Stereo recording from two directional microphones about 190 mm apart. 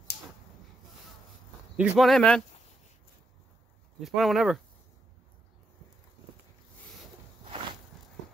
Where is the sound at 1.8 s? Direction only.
Centre (ahead or behind).